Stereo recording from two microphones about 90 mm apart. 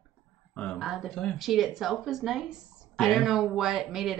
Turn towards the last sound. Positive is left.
turn(degrees=-5)  # may be behind; listen again after turning